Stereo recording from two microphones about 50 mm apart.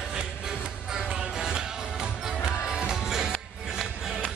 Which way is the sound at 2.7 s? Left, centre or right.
Centre.